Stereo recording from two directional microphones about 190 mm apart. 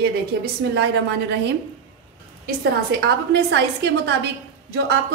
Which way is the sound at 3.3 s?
60° right (ahead or behind).